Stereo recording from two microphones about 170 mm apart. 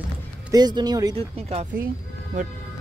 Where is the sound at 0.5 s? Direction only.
25° right (ahead or behind).